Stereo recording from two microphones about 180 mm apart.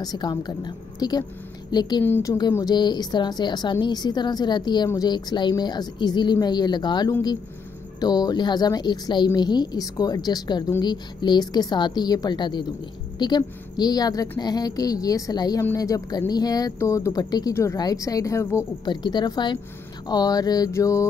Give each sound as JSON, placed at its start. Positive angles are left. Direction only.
{"t": 0.0, "sound": "a woman's voice", "side_deg": 20}
{"t": 2.0, "sound": "a woman's voice", "side_deg": 10}